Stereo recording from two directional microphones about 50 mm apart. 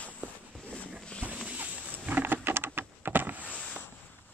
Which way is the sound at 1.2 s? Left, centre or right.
Right.